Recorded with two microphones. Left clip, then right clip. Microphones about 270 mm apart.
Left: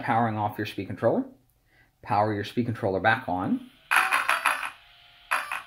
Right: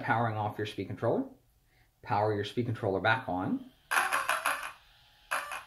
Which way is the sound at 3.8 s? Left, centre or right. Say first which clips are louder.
Left 6 dB; centre.